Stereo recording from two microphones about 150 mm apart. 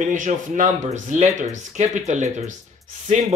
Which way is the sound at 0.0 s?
55° right (ahead or behind).